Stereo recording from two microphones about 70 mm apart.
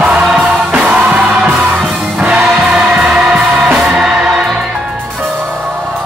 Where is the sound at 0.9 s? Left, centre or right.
Centre.